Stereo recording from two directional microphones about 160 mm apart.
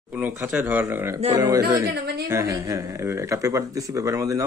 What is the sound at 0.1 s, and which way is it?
Speech, 10° right (ahead or behind).